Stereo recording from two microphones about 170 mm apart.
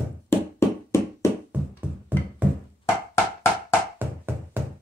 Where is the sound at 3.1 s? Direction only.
15° left (ahead or behind).